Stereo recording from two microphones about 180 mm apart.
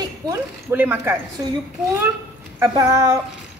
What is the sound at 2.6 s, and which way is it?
Speech, 15° right (ahead or behind).